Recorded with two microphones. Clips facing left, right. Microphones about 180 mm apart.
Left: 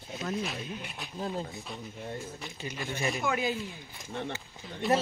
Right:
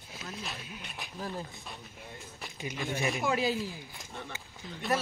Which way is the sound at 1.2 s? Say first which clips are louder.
Left 4 dB; 25° left (ahead or behind).